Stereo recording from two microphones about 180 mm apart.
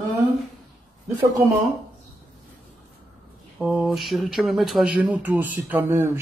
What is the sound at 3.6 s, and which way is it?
Speech, 5° right (ahead or behind).